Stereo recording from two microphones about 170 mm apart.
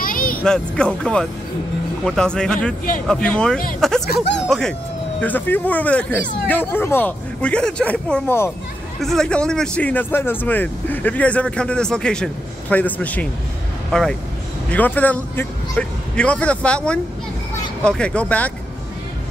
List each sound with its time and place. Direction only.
0.0 s music: 55° left (ahead or behind)
0.4 s speech: 5° left (ahead or behind)
4.1 s speech: 90° left
4.5 s speech: 5° left (ahead or behind)
14.7 s speech: 10° left (ahead or behind)